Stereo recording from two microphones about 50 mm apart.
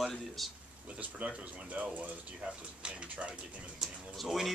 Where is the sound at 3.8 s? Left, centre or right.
Centre.